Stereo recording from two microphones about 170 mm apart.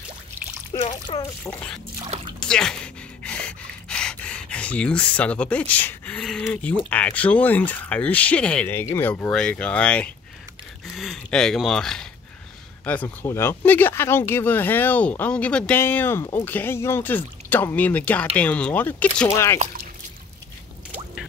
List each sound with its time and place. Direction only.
2.4 s speech: 5° left (ahead or behind)